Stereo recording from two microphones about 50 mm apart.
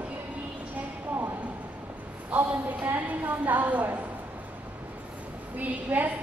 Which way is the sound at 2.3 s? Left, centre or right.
Right.